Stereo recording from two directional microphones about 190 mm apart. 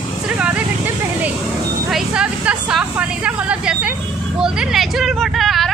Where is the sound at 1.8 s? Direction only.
5° right (ahead or behind).